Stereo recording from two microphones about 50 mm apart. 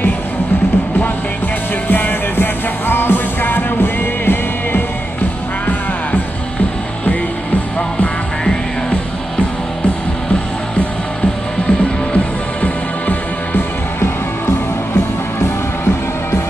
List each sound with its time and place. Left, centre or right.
1.9 s music: left
13.5 s music: left